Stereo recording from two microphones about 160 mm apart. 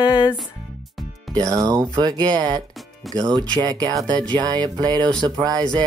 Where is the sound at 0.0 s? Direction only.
30° left (ahead or behind).